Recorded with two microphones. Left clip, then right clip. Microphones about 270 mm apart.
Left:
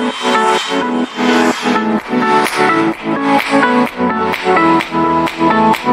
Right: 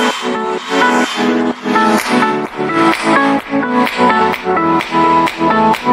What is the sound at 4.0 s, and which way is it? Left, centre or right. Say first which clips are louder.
Music: right 5 dB; right.